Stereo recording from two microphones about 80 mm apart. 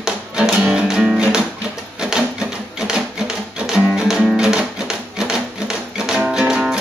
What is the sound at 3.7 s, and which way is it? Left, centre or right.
Music, centre.